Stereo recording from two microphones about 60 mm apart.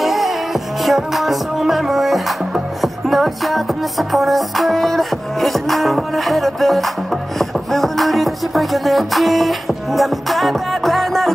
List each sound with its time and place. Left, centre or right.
0.0 s music: centre